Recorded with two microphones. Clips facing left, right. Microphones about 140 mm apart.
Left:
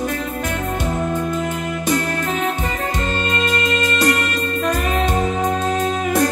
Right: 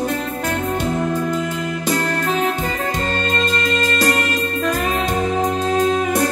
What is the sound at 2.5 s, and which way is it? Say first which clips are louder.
Music: right 1 dB; 35° left (ahead or behind).